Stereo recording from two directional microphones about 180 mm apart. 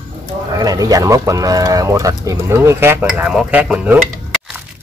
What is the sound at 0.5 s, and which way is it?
Speech, 20° right (ahead or behind).